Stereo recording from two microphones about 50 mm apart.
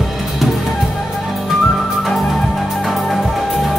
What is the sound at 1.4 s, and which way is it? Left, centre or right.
Music, centre.